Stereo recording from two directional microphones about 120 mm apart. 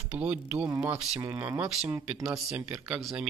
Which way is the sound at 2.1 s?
5° right (ahead or behind).